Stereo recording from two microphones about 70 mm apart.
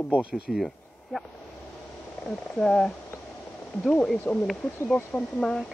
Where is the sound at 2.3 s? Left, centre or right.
Centre.